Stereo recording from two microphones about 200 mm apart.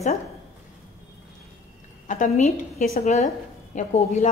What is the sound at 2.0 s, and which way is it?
A woman's voice, 40° left (ahead or behind).